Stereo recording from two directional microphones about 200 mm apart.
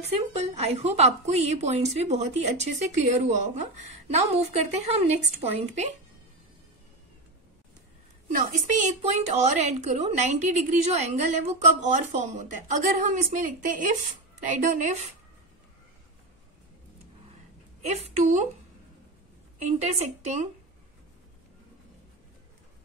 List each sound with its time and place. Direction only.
0.3 s a woman's voice: 30° right (ahead or behind)
8.4 s a woman's voice: 40° right (ahead or behind)
17.8 s a woman's voice: 35° right (ahead or behind)
19.6 s a woman's voice: 35° right (ahead or behind)